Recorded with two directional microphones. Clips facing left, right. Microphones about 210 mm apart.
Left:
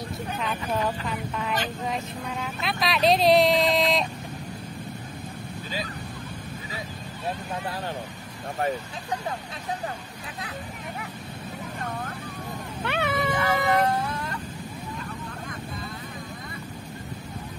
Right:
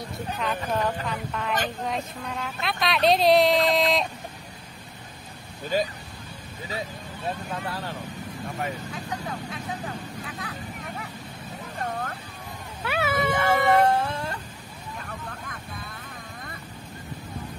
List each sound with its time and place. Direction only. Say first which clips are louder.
0.4 s speech: right 1 dB; centre (ahead or behind)
12.8 s cat: right 1 dB; 5° right (ahead or behind)
13.8 s a sound: right 3 dB; 30° right (ahead or behind)